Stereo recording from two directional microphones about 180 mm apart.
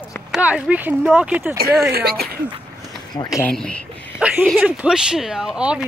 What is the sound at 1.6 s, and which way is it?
Speech, 60° right (ahead or behind).